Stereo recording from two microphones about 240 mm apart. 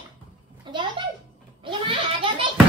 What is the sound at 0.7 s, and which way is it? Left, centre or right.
Speech, centre.